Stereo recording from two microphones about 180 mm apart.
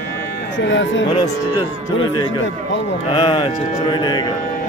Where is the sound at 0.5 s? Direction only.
90° left.